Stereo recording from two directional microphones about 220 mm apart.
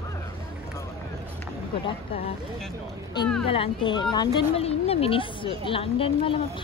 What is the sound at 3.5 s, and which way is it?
A woman's voice, 25° left (ahead or behind).